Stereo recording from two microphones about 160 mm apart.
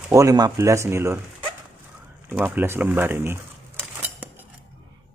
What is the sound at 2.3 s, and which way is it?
Speech, 10° right (ahead or behind).